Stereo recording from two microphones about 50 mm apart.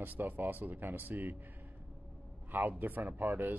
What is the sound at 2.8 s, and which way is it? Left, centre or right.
Speech, right.